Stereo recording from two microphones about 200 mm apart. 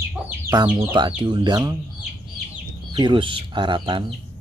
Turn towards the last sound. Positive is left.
turn(degrees=-25)  # may be behind; listen again after turning